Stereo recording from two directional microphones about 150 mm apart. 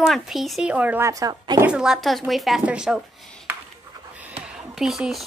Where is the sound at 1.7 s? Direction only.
5° right (ahead or behind).